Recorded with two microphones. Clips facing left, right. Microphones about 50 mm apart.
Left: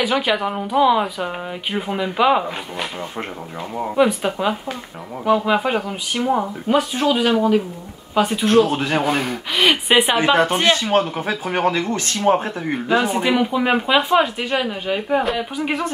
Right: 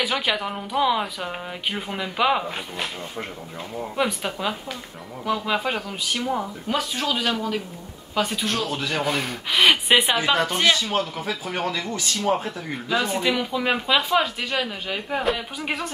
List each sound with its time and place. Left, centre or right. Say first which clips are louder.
0.0 s speech: left 5 dB; centre
3.9 s speech: left 8 dB; centre; by 9.0 s left
9.2 s speech: left 1 dB; centre
10.1 s speech: left 6 dB; left
13.0 s speech: left 5 dB; centre